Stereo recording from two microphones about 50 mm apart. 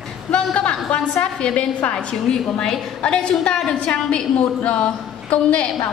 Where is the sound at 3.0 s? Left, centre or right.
Centre.